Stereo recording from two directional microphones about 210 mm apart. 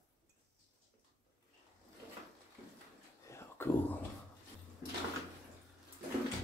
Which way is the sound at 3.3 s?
10° left (ahead or behind).